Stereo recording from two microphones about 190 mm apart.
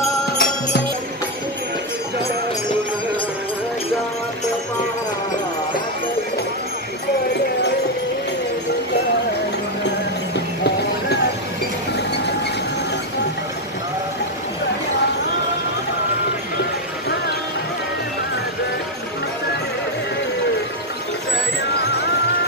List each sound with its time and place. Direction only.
0.4 s music: 50° left (ahead or behind)